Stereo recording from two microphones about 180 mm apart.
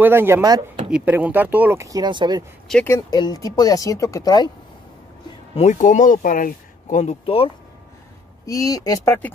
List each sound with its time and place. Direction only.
0.0 s speech: 10° right (ahead or behind)
0.8 s speech: 5° right (ahead or behind); by 2.4 s 25° right (ahead or behind)
2.7 s speech: 10° left (ahead or behind)
3.1 s speech: 20° left (ahead or behind)
5.5 s speech: 40° left (ahead or behind)
8.5 s speech: 20° left (ahead or behind)